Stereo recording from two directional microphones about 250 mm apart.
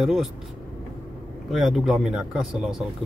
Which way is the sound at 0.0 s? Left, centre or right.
Centre.